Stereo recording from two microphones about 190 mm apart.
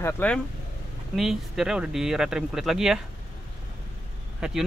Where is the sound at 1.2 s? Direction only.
Centre (ahead or behind).